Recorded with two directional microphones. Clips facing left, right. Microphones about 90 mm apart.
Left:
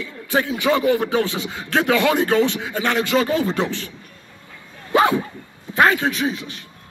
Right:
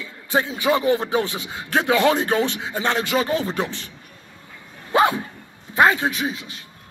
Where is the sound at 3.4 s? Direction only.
25° left (ahead or behind).